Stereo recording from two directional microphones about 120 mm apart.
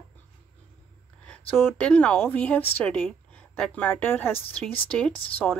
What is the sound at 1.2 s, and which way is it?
A woman's voice, 10° left (ahead or behind).